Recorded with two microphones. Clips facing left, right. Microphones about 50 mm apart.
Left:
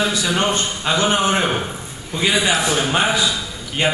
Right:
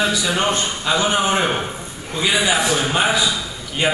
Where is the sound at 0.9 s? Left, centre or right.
Left.